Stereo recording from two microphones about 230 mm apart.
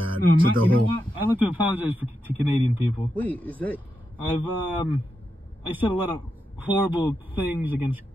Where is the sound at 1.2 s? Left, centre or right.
Centre.